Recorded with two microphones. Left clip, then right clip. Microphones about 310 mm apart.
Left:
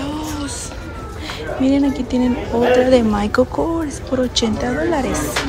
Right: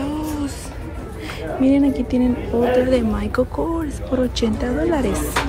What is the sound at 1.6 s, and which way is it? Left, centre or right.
Speech, centre.